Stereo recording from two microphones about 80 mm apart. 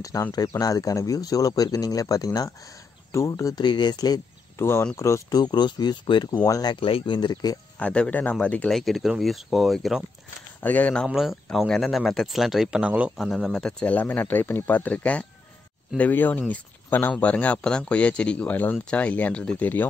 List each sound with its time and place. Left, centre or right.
0.3 s speech: left
3.5 s speech: left
4.6 s speech: left
5.3 s speech: left
6.4 s speech: left
7.8 s speech: centre
8.6 s speech: centre
10.6 s speech: left
11.5 s speech: centre
12.8 s speech: centre
13.5 s speech: centre
13.9 s speech: left